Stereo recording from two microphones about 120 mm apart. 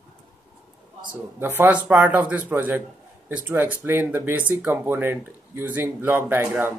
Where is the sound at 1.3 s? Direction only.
20° right (ahead or behind).